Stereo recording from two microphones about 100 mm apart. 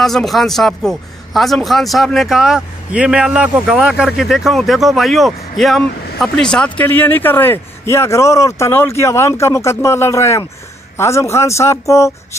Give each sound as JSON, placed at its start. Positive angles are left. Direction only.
{"t": 0.0, "sound": "speech", "side_deg": 0}